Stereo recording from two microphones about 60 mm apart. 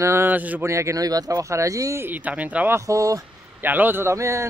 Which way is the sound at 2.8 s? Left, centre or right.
Right.